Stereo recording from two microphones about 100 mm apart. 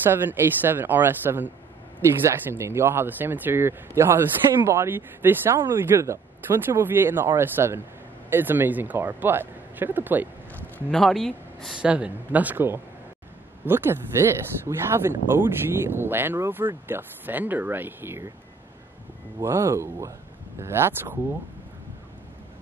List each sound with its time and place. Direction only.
0.0 s speech: 20° right (ahead or behind)
10.9 s speech: 5° left (ahead or behind)
11.7 s speech: 10° right (ahead or behind)
19.4 s speech: 30° right (ahead or behind)